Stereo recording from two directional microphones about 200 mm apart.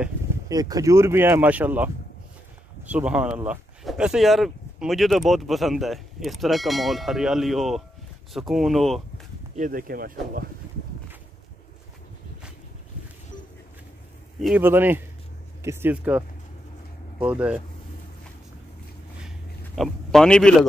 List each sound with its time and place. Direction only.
0.5 s speech: 20° right (ahead or behind)
2.9 s speech: 5° right (ahead or behind)
9.6 s speech: 45° right (ahead or behind)
14.4 s speech: 5° right (ahead or behind)
19.2 s a sound: centre (ahead or behind)